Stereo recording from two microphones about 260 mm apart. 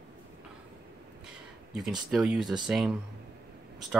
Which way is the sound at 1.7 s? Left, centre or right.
Centre.